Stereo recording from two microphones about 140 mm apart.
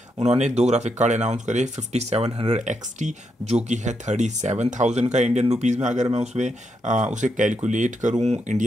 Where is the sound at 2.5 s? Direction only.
60° right (ahead or behind).